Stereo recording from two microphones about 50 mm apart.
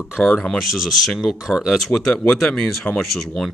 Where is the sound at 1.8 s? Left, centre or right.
Centre.